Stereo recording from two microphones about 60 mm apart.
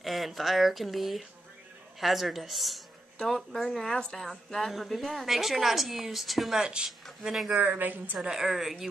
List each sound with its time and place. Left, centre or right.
0.0 s a woman's voice: centre
6.6 s speech: centre
7.5 s a woman's voice: right
8.3 s a woman's voice: centre